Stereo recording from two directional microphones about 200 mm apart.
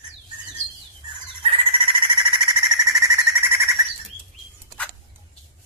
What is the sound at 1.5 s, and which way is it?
Bird, 30° right (ahead or behind).